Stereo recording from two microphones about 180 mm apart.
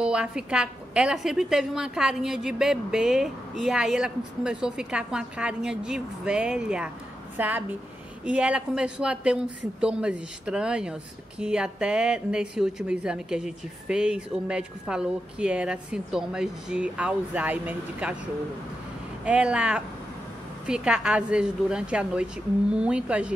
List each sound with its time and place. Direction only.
0.0 s speech: 5° right (ahead or behind)
19.2 s speech: 5° right (ahead or behind)